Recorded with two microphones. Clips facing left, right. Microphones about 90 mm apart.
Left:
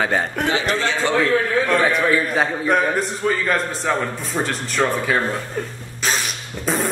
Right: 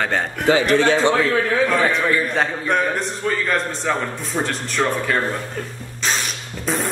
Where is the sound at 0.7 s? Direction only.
55° right (ahead or behind).